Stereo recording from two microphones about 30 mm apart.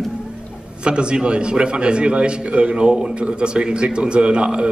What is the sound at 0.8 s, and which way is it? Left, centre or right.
A man's voice, right.